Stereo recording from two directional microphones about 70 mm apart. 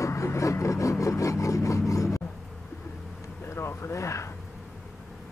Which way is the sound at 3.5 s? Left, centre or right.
Left.